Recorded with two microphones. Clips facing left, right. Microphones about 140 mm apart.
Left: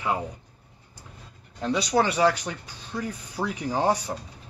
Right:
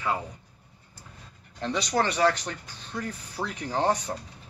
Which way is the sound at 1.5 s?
5° left (ahead or behind).